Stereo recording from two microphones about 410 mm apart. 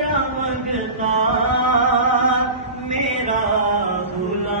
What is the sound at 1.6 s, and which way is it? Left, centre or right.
Music, right.